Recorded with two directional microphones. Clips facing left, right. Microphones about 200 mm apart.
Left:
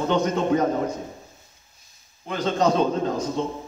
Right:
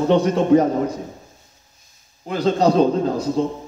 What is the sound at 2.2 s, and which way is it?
A man's voice, 35° right (ahead or behind).